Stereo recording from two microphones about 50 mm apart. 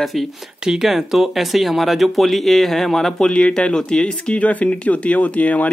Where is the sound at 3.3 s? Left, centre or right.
Left.